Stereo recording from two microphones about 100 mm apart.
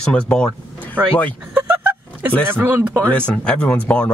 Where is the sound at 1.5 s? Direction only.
15° right (ahead or behind).